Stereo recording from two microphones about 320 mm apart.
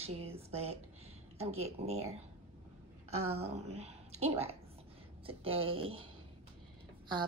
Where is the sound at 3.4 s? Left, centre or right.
Centre.